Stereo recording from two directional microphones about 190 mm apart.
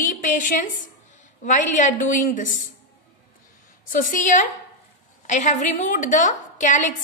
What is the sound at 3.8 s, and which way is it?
A woman's voice, 45° left (ahead or behind).